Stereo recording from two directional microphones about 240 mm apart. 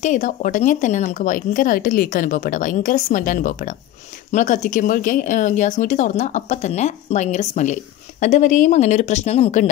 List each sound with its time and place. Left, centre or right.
0.0 s speech: left